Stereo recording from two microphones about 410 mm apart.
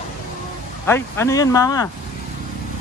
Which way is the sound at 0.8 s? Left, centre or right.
Centre.